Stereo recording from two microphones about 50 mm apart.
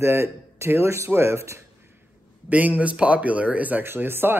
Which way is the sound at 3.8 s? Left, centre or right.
Right.